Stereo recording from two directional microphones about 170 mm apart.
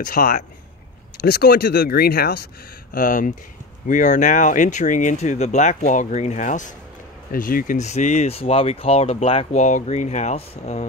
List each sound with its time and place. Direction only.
0.0 s speech: 55° left (ahead or behind)
1.2 s speech: 65° left (ahead or behind)
2.9 s speech: 50° left (ahead or behind)